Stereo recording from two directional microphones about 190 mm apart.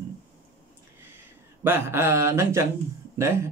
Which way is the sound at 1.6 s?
10° right (ahead or behind).